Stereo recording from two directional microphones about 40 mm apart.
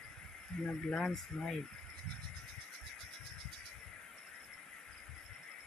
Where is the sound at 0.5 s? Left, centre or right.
Centre.